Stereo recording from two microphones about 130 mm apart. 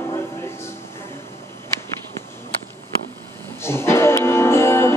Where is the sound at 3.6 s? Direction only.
20° left (ahead or behind).